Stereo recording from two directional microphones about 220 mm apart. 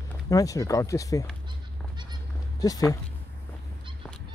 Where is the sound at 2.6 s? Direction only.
15° left (ahead or behind).